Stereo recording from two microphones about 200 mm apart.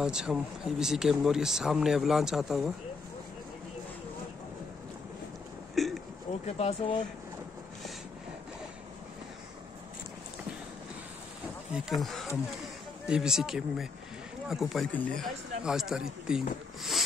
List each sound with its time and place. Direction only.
0.0 s speech: 5° right (ahead or behind)
5.8 s a sound: centre (ahead or behind)
6.4 s speech: 30° left (ahead or behind)
11.7 s speech: centre (ahead or behind)